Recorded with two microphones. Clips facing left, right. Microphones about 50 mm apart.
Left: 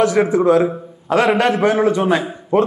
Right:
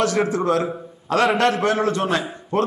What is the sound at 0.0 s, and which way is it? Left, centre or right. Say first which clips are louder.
A man's voice: left 6 dB; centre.